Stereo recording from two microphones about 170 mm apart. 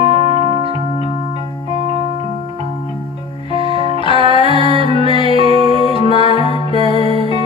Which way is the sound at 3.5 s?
30° left (ahead or behind).